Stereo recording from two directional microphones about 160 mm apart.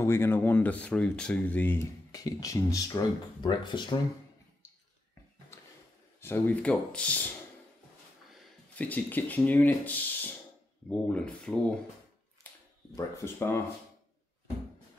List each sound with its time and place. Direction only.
0.0 s speech: 15° left (ahead or behind)
2.1 s speech: 20° left (ahead or behind)
6.2 s speech: 10° left (ahead or behind)
8.7 s speech: 10° left (ahead or behind)
12.9 s speech: 15° left (ahead or behind)